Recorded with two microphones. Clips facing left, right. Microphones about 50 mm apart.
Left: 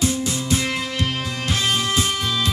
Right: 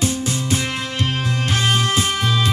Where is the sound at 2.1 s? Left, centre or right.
Right.